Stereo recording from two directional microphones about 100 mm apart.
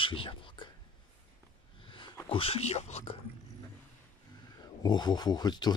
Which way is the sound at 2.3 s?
70° left (ahead or behind).